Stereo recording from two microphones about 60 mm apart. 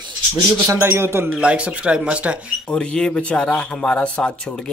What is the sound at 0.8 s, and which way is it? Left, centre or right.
Speech, right.